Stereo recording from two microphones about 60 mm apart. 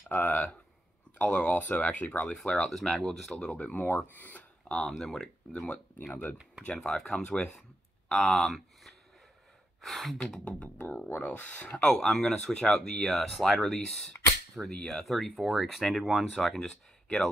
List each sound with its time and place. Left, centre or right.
0.1 s speech: left
2.7 s speech: centre
3.5 s speech: left; by 5.3 s centre
6.6 s speech: centre
10.4 s speech: left
11.8 s speech: centre